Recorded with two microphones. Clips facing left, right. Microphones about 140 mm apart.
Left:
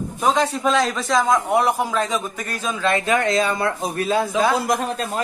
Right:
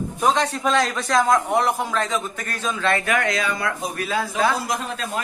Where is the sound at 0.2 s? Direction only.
Centre (ahead or behind).